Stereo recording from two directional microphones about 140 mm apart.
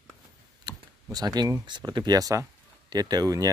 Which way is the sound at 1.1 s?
30° right (ahead or behind).